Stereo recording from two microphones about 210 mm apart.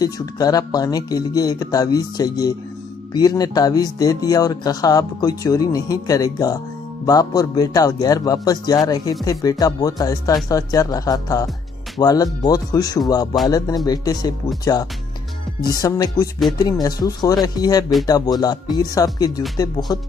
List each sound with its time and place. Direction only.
0.0 s speech: 15° left (ahead or behind)